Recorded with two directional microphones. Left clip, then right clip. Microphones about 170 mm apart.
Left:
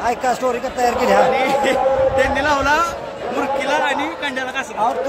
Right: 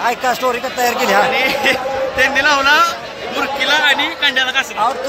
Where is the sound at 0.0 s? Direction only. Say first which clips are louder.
Right 2 dB; centre (ahead or behind).